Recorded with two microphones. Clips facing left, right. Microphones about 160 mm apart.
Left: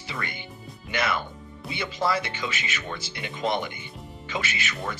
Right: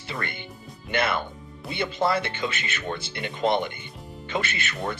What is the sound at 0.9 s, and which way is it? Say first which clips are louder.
Speech: right 2 dB; 55° right (ahead or behind).